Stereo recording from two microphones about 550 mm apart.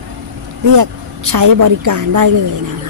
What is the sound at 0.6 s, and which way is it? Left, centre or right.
A woman's voice, right.